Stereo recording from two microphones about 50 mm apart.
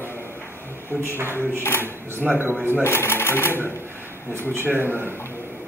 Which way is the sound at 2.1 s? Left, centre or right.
Right.